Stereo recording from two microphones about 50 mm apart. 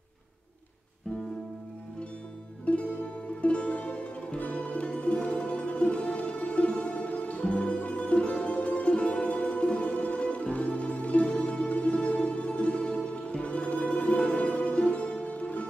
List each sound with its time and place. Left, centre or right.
2.6 s music: left